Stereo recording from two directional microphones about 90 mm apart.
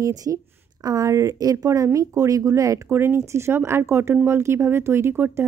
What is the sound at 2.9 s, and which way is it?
Speech, 25° right (ahead or behind).